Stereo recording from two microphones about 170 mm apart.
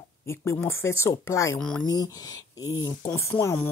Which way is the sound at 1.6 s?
5° left (ahead or behind).